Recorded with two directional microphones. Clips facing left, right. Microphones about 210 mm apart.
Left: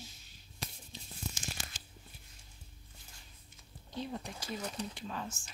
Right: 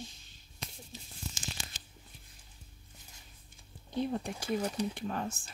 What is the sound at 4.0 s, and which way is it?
Speech, 55° right (ahead or behind).